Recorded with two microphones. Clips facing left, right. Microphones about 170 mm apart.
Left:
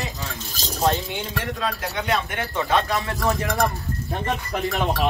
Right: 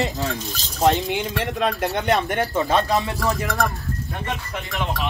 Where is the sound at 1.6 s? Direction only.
50° right (ahead or behind).